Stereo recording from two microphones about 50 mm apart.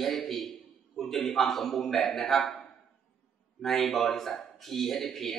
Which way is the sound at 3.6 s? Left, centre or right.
Centre.